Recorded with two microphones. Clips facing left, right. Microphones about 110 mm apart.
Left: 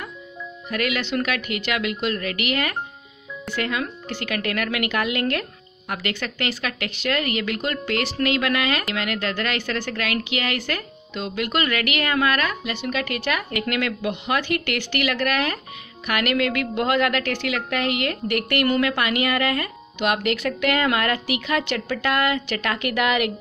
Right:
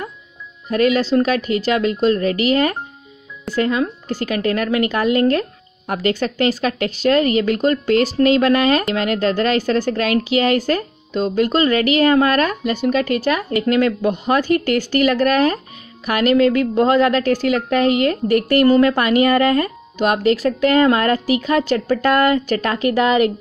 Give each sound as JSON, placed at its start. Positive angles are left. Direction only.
{"t": 0.7, "sound": "a woman's voice", "side_deg": -35}